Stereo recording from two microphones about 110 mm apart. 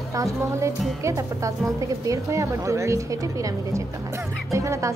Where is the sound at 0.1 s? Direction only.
30° right (ahead or behind).